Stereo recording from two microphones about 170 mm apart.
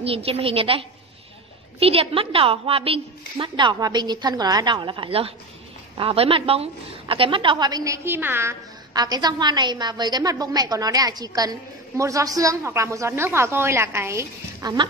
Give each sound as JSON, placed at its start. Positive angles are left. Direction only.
{"t": 0.0, "sound": "a woman's voice", "side_deg": -35}